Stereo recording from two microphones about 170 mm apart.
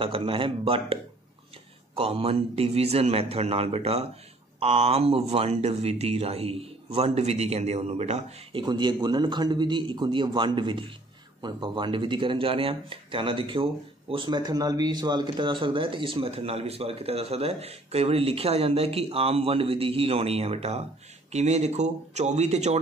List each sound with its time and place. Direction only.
0.0 s speech: 30° right (ahead or behind)
2.0 s speech: 35° right (ahead or behind)
8.6 s a man's voice: 25° right (ahead or behind); by 22.8 s 40° right (ahead or behind)